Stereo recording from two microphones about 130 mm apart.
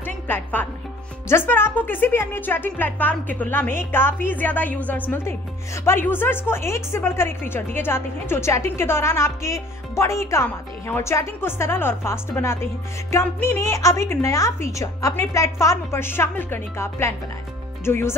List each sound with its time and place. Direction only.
0.0 s music: 15° left (ahead or behind)
1.3 s a woman's voice: 15° left (ahead or behind)